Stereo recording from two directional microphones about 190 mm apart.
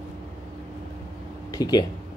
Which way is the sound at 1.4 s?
20° left (ahead or behind).